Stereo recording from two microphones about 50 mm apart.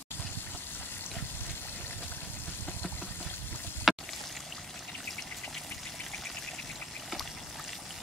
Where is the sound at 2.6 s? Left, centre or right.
Left.